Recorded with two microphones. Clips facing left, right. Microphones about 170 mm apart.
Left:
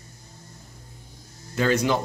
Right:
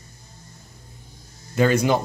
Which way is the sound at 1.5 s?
15° right (ahead or behind).